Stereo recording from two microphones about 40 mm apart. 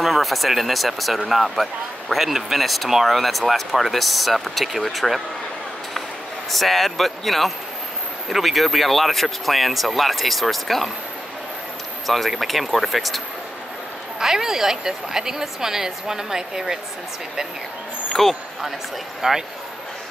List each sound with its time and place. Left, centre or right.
0.0 s a woman's voice: centre
6.5 s speech: centre
12.1 s speech: centre
14.2 s a woman's voice: centre
18.2 s speech: centre
19.2 s a woman's voice: centre